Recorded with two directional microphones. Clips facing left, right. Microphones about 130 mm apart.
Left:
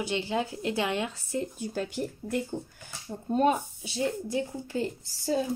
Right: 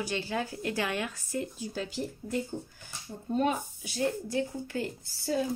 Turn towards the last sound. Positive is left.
turn(degrees=25)  # may be behind; listen again after turning